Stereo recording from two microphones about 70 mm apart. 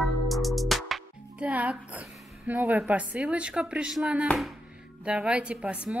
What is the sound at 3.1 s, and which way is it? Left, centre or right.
A woman's voice, centre.